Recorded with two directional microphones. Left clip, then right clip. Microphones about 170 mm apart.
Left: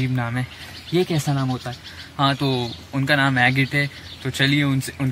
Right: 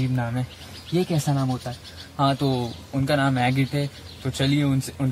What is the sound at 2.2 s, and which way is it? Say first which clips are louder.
A man's voice: left 2 dB; 10° right (ahead or behind).